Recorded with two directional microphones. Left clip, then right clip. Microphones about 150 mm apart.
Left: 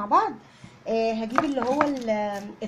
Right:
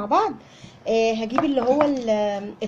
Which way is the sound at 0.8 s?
5° right (ahead or behind).